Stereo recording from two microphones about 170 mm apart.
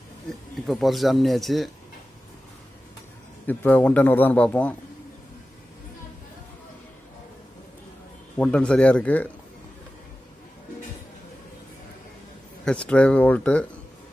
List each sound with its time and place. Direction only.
0.7 s speech: centre (ahead or behind)
3.4 s a man's voice: 10° left (ahead or behind)
8.4 s a man's voice: 5° left (ahead or behind)
12.6 s a man's voice: 5° left (ahead or behind)